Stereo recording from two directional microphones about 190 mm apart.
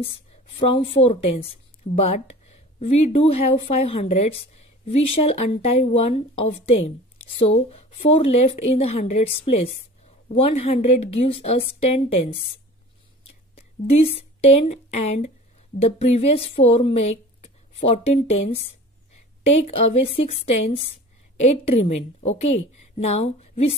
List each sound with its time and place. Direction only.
0.0 s a woman's voice: 30° left (ahead or behind)
7.7 s a woman's voice: 30° left (ahead or behind)
13.6 s a woman's voice: 30° left (ahead or behind)